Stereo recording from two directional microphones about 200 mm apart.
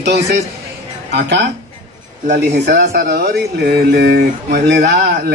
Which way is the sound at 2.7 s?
50° right (ahead or behind).